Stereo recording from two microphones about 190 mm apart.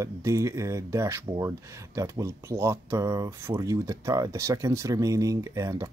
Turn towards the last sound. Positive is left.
turn(degrees=-15)  # may be behind; listen again after turning